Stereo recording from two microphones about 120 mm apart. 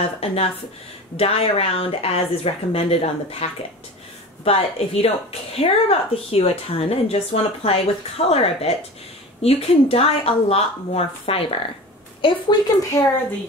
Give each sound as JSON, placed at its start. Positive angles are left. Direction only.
{"t": 0.2, "sound": "a woman's voice", "side_deg": 55}
{"t": 4.5, "sound": "a woman's voice", "side_deg": 55}
{"t": 12.2, "sound": "speech", "side_deg": 35}